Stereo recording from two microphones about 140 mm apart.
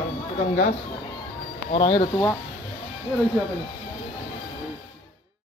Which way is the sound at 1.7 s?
45° left (ahead or behind).